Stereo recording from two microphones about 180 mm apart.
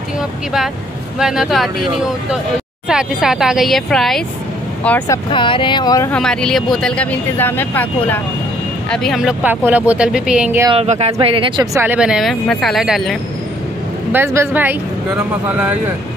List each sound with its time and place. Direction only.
1.2 s speech: centre (ahead or behind)
4.8 s speech: 15° left (ahead or behind)
6.1 s speech: 5° left (ahead or behind)
10.7 s speech: 35° right (ahead or behind); by 13.2 s centre (ahead or behind)
14.1 s a woman's voice: 15° right (ahead or behind)